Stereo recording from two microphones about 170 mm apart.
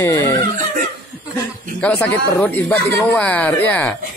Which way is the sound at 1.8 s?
10° left (ahead or behind).